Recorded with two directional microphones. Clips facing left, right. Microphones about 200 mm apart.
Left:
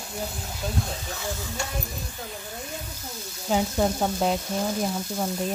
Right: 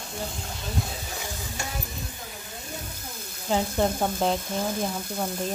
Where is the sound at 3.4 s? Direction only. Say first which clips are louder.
Left 1 dB; 5° left (ahead or behind).